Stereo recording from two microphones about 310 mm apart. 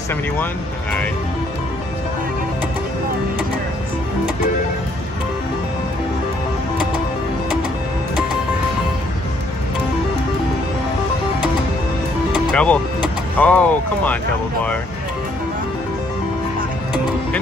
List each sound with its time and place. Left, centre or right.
12.5 s speech: centre